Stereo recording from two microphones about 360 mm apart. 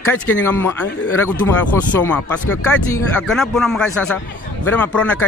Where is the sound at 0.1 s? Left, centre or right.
Centre.